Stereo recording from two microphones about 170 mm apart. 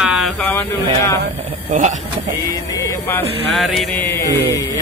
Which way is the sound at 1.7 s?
45° right (ahead or behind).